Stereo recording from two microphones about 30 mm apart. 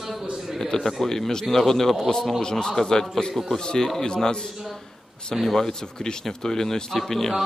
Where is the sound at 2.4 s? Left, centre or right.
Left.